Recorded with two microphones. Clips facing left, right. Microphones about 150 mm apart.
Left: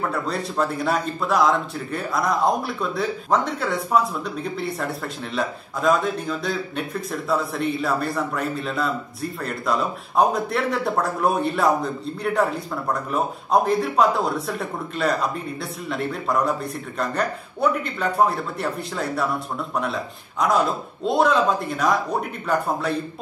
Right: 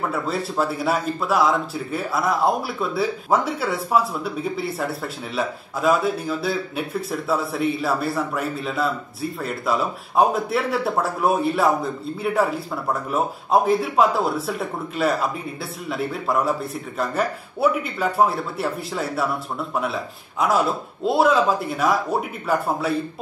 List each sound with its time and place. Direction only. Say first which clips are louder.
0.1 s a man's voice: right 1 dB; 5° right (ahead or behind)